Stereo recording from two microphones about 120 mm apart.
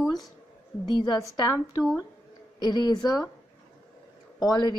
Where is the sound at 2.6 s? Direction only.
35° left (ahead or behind).